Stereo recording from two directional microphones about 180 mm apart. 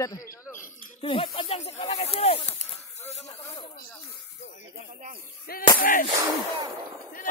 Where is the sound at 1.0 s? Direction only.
30° left (ahead or behind).